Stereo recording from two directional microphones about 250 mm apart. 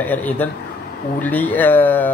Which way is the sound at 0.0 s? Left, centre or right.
Centre.